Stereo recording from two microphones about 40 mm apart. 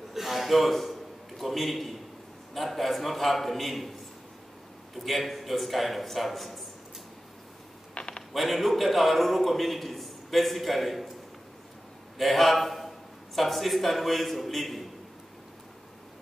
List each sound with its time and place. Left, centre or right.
0.1 s a sound: centre
1.4 s a man's voice: centre
4.9 s a man's voice: centre
7.9 s a sound: left
8.3 s a man's voice: centre
12.2 s a man's voice: centre